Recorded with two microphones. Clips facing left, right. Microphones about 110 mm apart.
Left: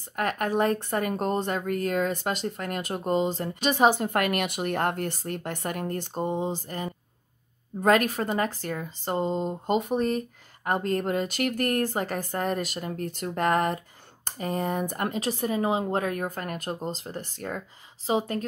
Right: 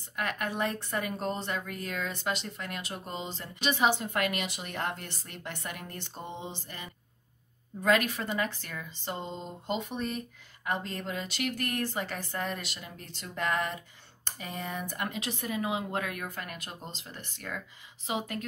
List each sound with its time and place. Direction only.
0.1 s speech: 45° left (ahead or behind)